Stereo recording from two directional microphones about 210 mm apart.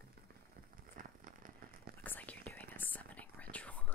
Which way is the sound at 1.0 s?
40° right (ahead or behind).